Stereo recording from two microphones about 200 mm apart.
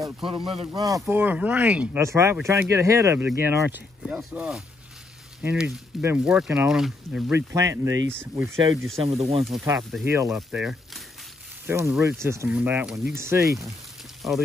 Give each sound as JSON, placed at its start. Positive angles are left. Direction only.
{"t": 0.2, "sound": "speech", "side_deg": -25}
{"t": 9.0, "sound": "speech", "side_deg": -30}
{"t": 10.0, "sound": "speech", "side_deg": -15}
{"t": 14.2, "sound": "speech", "side_deg": 0}